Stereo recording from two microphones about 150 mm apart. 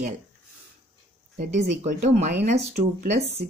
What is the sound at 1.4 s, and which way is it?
Speech, 55° right (ahead or behind).